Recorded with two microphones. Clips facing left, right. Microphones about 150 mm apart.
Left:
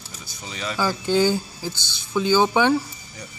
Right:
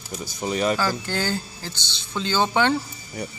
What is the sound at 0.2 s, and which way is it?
Speech, 50° right (ahead or behind).